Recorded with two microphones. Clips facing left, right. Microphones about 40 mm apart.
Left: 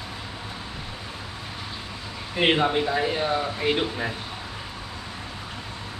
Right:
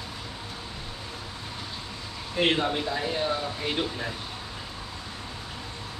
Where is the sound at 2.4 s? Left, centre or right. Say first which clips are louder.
Left 4 dB; left.